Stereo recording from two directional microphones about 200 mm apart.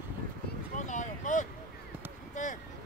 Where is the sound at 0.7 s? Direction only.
40° left (ahead or behind).